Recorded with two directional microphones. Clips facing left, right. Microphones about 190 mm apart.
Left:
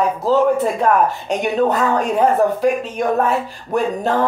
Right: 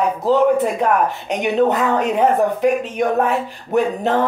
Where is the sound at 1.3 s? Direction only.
20° right (ahead or behind).